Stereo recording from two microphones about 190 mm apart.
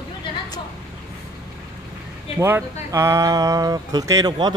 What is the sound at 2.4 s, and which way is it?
Speech, 15° right (ahead or behind).